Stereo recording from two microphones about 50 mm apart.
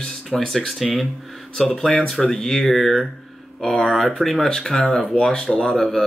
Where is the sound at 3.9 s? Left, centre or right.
Centre.